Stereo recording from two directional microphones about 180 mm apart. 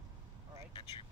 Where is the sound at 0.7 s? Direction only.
25° left (ahead or behind).